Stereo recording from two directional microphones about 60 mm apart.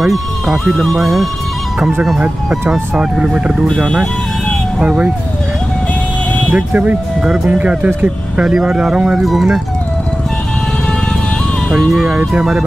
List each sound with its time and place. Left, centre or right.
0.0 s speech: centre
2.7 s speech: centre
3.7 s speech: centre
4.7 s speech: centre
6.5 s speech: right
7.2 s speech: centre
7.5 s speech: right
8.5 s speech: centre
11.7 s speech: centre